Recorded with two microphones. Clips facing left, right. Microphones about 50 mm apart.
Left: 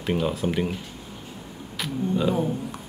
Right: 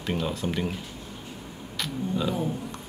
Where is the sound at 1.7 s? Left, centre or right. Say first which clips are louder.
Left 3 dB; centre.